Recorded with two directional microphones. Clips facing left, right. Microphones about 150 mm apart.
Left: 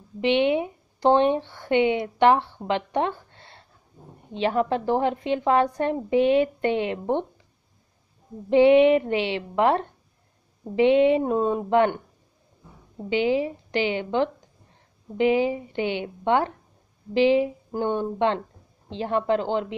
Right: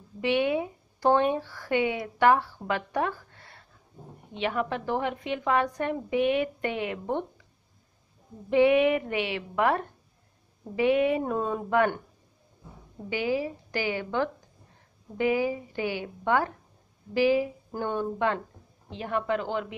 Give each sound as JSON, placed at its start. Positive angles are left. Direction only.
{"t": 0.2, "sound": "a woman's voice", "side_deg": 25}
{"t": 8.5, "sound": "a woman's voice", "side_deg": 30}
{"t": 13.1, "sound": "a woman's voice", "side_deg": 25}